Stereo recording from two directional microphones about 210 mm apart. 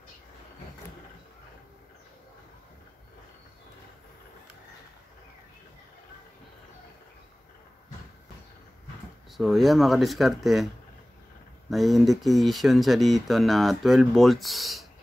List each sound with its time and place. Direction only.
9.4 s speech: centre (ahead or behind)
11.7 s speech: centre (ahead or behind)